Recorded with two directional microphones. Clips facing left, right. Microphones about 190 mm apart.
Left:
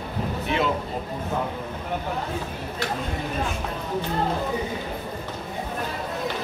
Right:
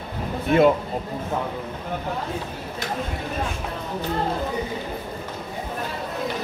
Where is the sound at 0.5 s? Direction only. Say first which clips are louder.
Right 8 dB; 50° right (ahead or behind).